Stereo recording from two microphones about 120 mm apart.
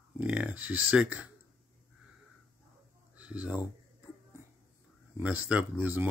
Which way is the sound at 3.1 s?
10° right (ahead or behind).